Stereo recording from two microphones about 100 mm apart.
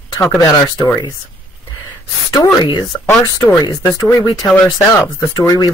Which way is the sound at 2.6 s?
45° left (ahead or behind).